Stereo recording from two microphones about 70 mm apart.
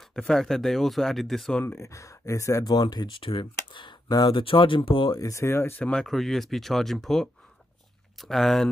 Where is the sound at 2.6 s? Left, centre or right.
Left.